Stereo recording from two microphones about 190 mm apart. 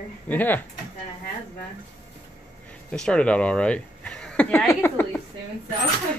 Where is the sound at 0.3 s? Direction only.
10° left (ahead or behind).